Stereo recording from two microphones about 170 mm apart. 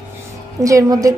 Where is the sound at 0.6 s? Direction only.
20° right (ahead or behind).